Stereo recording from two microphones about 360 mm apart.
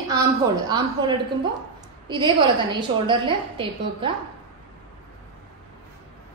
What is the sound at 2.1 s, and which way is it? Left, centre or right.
A woman's voice, centre.